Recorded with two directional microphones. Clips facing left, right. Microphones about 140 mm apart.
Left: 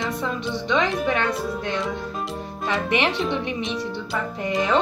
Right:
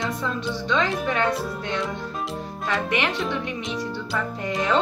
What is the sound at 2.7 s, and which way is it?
Speech, 25° left (ahead or behind).